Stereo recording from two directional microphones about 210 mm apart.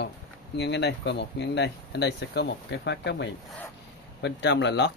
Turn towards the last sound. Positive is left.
turn(degrees=55)  # may be behind; listen again after turning